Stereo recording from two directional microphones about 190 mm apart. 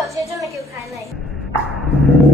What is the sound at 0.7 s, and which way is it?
Speech, 15° right (ahead or behind).